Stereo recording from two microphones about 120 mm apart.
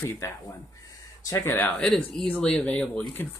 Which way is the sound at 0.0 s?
25° left (ahead or behind).